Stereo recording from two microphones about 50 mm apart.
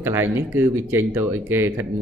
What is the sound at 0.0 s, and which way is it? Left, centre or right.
A man's voice, right.